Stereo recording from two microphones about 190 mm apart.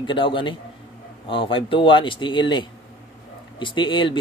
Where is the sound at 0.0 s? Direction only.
25° left (ahead or behind).